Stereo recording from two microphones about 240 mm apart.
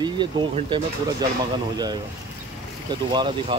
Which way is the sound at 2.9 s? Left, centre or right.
Centre.